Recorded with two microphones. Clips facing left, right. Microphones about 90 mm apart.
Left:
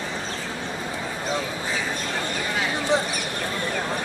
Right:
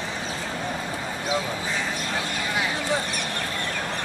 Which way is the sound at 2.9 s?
20° left (ahead or behind).